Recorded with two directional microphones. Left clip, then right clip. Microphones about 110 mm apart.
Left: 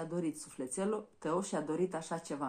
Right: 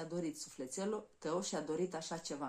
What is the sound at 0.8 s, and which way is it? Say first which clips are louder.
Speech: left 4 dB; 40° right (ahead or behind).